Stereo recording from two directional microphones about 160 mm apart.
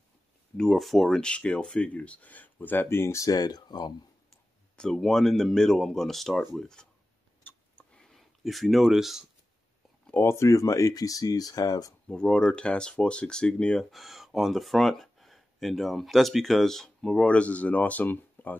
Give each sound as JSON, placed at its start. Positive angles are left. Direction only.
{"t": 0.6, "sound": "speech", "side_deg": 0}
{"t": 4.7, "sound": "speech", "side_deg": 5}
{"t": 7.4, "sound": "a sound", "side_deg": 10}
{"t": 10.0, "sound": "speech", "side_deg": 15}
{"t": 12.1, "sound": "speech", "side_deg": 5}